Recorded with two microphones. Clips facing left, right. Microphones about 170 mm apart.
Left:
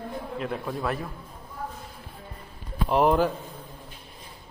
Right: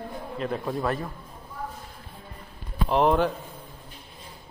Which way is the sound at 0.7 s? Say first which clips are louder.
Right 3 dB; centre (ahead or behind).